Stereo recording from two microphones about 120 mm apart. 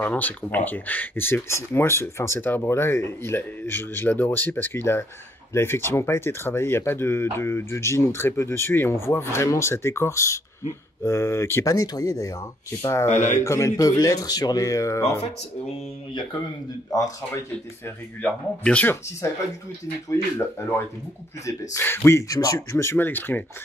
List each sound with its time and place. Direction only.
0.0 s speech: 15° left (ahead or behind)
13.1 s speech: 90° left
13.4 s speech: 25° left (ahead or behind)
17.8 s speech: 10° left (ahead or behind)
20.1 s speech: 20° left (ahead or behind)